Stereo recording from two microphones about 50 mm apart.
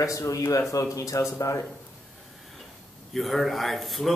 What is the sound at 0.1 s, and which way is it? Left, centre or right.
Speech, left.